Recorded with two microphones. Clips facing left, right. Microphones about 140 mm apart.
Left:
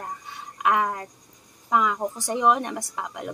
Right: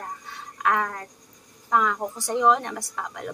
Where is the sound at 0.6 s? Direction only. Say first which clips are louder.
Left 2 dB; 15° left (ahead or behind).